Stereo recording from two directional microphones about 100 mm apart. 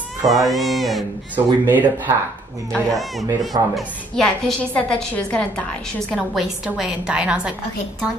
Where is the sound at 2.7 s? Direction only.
Centre (ahead or behind).